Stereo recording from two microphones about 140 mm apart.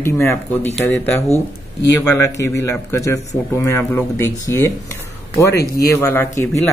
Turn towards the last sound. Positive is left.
turn(degrees=20)  # may be behind; listen again after turning